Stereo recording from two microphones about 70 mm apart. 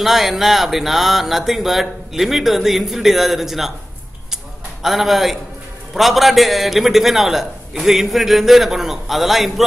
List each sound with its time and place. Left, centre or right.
0.0 s a man's voice: centre
4.8 s a man's voice: centre